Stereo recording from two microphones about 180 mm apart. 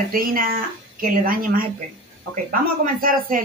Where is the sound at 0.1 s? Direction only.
55° right (ahead or behind).